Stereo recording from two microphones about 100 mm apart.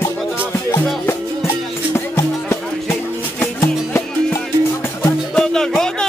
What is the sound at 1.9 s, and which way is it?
Music, 25° left (ahead or behind).